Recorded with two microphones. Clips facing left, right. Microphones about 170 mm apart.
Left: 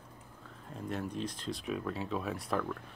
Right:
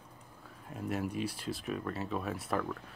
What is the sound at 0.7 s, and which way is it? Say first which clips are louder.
Speech: right 2 dB; 5° right (ahead or behind).